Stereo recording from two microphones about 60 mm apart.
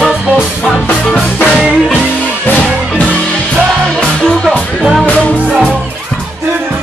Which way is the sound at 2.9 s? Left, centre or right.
Left.